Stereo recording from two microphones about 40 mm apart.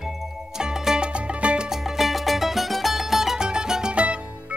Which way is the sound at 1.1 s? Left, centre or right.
Right.